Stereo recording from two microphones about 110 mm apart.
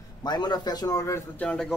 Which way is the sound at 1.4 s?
5° left (ahead or behind).